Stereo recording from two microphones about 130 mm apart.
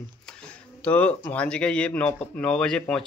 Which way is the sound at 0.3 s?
5° left (ahead or behind).